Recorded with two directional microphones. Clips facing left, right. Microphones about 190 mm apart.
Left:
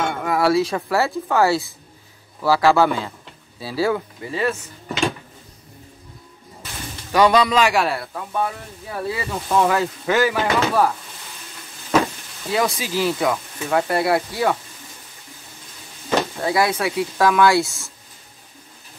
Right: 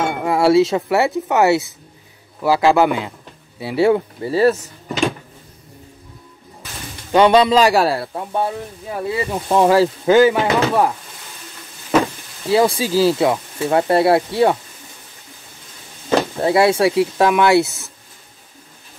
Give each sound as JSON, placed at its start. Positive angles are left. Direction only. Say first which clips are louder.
{"t": 0.0, "sound": "speech", "louder": "right 3 dB", "side_deg": -25}
{"t": 7.1, "sound": "speech", "louder": "right 4 dB", "side_deg": -25}
{"t": 12.4, "sound": "speech", "louder": "right 6 dB", "side_deg": -30}
{"t": 16.2, "sound": "speech", "louder": "right 5 dB", "side_deg": -30}